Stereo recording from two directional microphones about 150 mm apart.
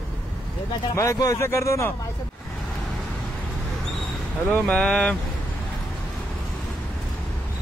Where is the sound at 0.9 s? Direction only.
20° left (ahead or behind).